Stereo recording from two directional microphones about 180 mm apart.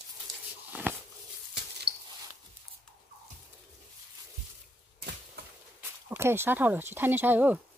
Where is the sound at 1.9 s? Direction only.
65° right (ahead or behind).